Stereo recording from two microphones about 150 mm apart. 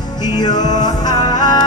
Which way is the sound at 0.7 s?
25° left (ahead or behind).